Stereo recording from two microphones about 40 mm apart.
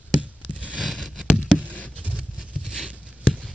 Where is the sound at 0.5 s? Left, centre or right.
Right.